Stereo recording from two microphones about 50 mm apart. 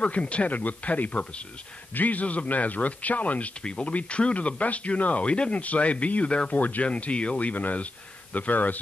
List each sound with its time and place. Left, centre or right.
0.0 s a man's voice: left
6.5 s speech: left
6.9 s a man's voice: left